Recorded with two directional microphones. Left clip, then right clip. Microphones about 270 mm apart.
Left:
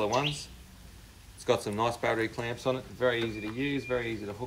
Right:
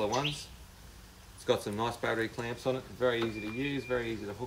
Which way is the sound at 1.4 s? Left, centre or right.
Centre.